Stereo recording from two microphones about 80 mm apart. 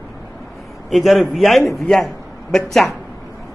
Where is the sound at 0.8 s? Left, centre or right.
Centre.